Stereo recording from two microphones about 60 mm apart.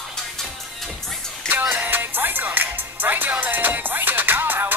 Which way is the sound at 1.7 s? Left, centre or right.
Right.